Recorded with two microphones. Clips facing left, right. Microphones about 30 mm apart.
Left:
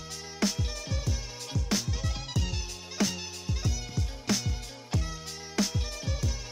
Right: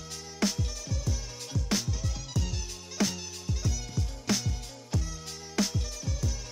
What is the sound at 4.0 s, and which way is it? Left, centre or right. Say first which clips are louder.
Music: even; centre.